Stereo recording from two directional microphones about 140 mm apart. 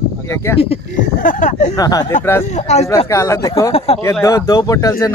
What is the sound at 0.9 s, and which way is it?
Speech, 65° left (ahead or behind).